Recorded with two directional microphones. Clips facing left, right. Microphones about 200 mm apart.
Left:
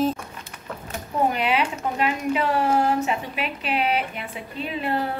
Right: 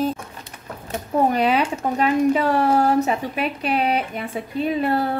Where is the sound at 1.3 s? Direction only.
40° right (ahead or behind).